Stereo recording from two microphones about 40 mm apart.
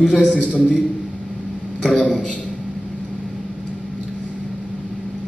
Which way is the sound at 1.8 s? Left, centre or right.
Left.